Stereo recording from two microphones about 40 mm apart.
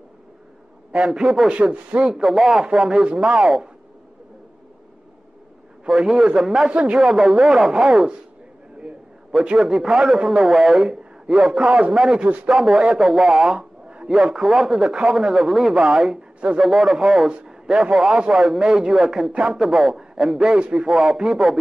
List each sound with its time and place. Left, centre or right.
0.9 s speech: centre
1.6 s speech: right
2.2 s a man's voice: centre
5.9 s a man's voice: centre
8.8 s a sound: centre
9.6 s a man's voice: centre
16.6 s a man's voice: centre
17.5 s a sound: centre
17.9 s a man's voice: centre
20.4 s speech: centre